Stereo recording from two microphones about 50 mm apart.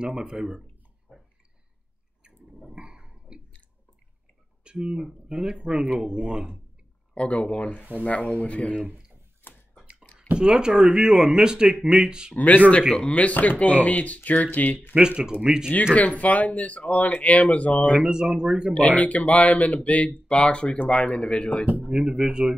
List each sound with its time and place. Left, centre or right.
0.0 s speech: centre
1.1 s a sound: centre
2.6 s a sound: centre
4.7 s speech: centre
7.2 s speech: left
9.4 s a sound: left
10.3 s speech: centre
12.4 s speech: left
15.0 s speech: centre
15.9 s speech: left
18.0 s speech: centre
18.8 s speech: left
22.0 s speech: centre